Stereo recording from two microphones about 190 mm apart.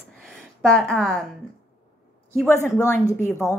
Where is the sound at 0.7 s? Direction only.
5° left (ahead or behind).